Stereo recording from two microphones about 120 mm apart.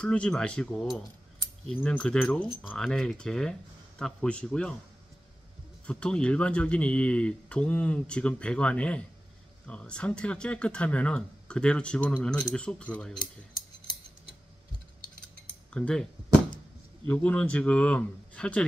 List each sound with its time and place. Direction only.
0.0 s speech: 10° left (ahead or behind)
5.9 s speech: 10° left (ahead or behind)
15.7 s speech: 10° left (ahead or behind)
17.1 s speech: 10° left (ahead or behind)